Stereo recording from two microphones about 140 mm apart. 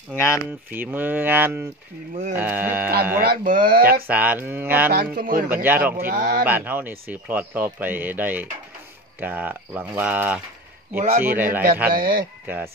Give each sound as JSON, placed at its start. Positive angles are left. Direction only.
{"t": 0.1, "sound": "speech", "side_deg": 20}
{"t": 0.7, "sound": "a man's voice", "side_deg": -15}
{"t": 3.2, "sound": "speech", "side_deg": -85}
{"t": 4.1, "sound": "a man's voice", "side_deg": -10}
{"t": 4.8, "sound": "speech", "side_deg": -90}
{"t": 5.5, "sound": "a man's voice", "side_deg": -15}
{"t": 5.9, "sound": "speech", "side_deg": -85}
{"t": 6.4, "sound": "a man's voice", "side_deg": -15}
{"t": 11.9, "sound": "speech", "side_deg": -90}
{"t": 12.4, "sound": "a man's voice", "side_deg": -15}